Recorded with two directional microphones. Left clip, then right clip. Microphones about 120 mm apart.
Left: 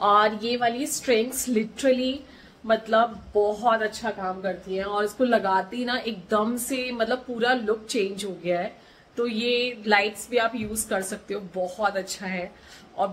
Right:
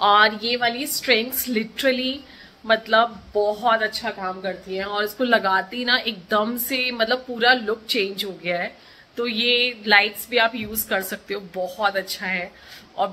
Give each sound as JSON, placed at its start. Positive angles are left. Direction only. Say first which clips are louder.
{"t": 0.0, "sound": "a woman's voice", "louder": "right 4 dB", "side_deg": 10}
{"t": 1.5, "sound": "a woman's voice", "louder": "right 2 dB", "side_deg": 0}